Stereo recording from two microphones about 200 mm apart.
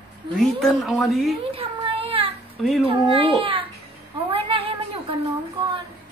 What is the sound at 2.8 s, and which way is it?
Speech, 25° right (ahead or behind).